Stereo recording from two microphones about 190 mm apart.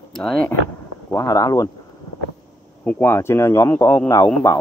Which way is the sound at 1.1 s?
15° left (ahead or behind).